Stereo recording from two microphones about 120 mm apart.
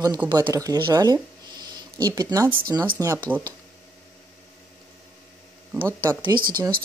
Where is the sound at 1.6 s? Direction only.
35° right (ahead or behind).